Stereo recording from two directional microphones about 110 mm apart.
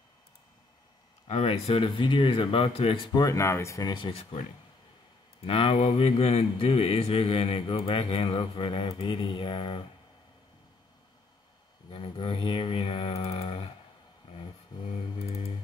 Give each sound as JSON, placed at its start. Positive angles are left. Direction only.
{"t": 1.2, "sound": "speech", "side_deg": 70}
{"t": 3.1, "sound": "speech", "side_deg": 35}
{"t": 4.1, "sound": "speech", "side_deg": 75}
{"t": 5.4, "sound": "speech", "side_deg": 60}
{"t": 11.9, "sound": "speech", "side_deg": 55}
{"t": 15.1, "sound": "typing", "side_deg": 65}